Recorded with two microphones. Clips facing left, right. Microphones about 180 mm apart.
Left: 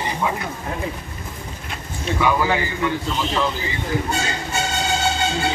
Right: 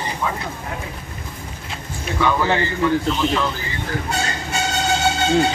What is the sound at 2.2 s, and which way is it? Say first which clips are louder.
Speech: right 1 dB; 10° left (ahead or behind).